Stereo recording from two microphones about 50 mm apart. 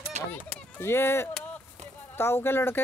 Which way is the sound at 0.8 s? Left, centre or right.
Left.